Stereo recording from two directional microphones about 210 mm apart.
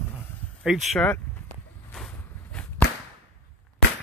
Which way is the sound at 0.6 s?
Centre (ahead or behind).